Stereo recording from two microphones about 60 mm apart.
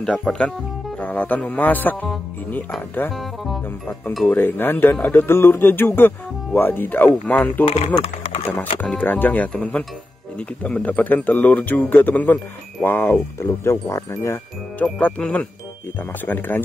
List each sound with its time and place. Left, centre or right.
0.0 s speech: centre; by 2.0 s left
4.4 s speech: left
13.4 s speech: left
14.8 s speech: left
16.0 s speech: left